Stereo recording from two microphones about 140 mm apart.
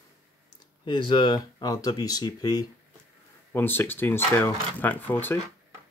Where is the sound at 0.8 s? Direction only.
35° left (ahead or behind).